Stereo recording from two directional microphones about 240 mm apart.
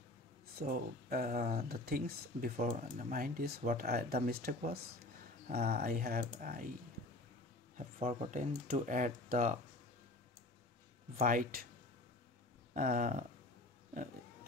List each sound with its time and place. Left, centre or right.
0.6 s speech: right
7.7 s speech: right
11.1 s speech: right
12.7 s speech: right